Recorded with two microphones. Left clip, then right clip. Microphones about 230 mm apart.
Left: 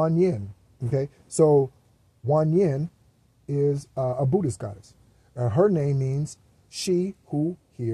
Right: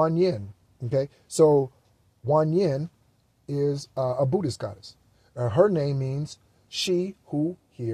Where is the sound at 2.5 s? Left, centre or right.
Centre.